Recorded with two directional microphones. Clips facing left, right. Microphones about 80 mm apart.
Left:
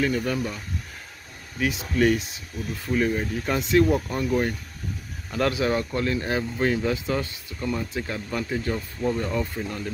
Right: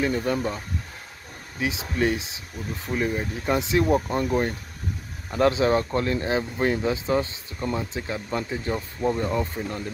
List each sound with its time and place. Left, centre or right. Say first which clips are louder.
0.0 s speech: right 1 dB; right
1.6 s speech: left 2 dB; right
6.2 s speech: right 1 dB; right